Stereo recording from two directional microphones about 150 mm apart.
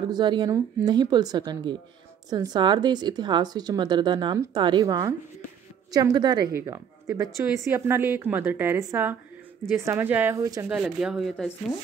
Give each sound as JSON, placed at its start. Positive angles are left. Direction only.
{"t": 0.1, "sound": "speech", "side_deg": -30}
{"t": 10.7, "sound": "speech", "side_deg": -5}